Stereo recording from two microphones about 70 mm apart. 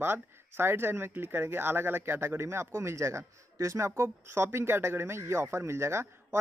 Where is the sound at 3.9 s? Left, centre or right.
Right.